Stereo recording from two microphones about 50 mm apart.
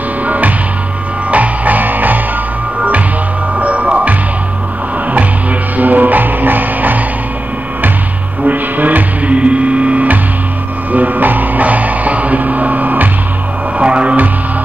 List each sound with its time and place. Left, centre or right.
0.2 s music: right
3.5 s music: right
5.8 s music: right
8.5 s mains hum: right
10.9 s music: right
13.7 s music: right